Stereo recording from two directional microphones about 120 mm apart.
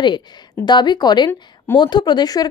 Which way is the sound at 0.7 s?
35° left (ahead or behind).